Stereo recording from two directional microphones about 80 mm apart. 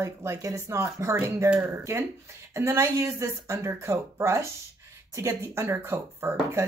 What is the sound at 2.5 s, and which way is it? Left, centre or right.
Speech, right.